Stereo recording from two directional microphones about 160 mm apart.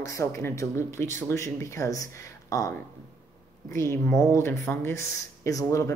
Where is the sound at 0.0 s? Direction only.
20° left (ahead or behind).